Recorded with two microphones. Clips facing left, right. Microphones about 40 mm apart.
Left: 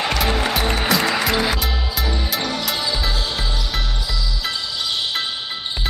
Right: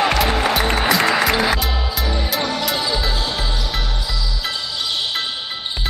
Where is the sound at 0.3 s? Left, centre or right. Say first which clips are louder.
Right 2 dB; centre.